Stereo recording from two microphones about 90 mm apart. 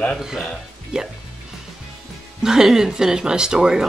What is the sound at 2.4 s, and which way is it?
Speech, 5° right (ahead or behind).